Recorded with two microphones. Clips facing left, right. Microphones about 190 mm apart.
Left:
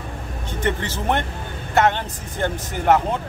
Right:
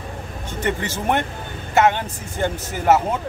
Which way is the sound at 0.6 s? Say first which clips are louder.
Even; 10° right (ahead or behind).